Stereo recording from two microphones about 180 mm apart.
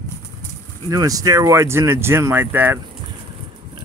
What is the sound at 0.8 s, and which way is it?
Speech, 20° right (ahead or behind).